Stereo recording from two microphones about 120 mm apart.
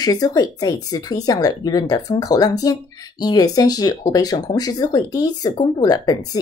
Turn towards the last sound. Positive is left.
turn(degrees=35)  # may be behind; listen again after turning